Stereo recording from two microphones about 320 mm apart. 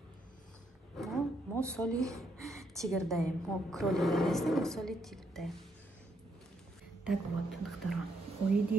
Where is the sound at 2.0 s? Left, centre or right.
Centre.